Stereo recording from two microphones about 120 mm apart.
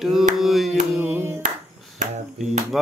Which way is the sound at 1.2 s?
20° right (ahead or behind).